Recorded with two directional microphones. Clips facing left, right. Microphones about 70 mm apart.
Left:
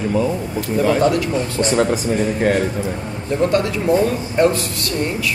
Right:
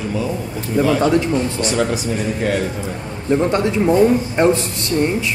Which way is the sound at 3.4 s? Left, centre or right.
Right.